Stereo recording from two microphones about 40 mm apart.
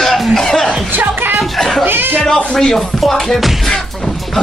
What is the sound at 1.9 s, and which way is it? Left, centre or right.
Speech, right.